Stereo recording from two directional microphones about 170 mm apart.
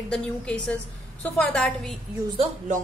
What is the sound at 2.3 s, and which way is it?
Speech, 45° right (ahead or behind).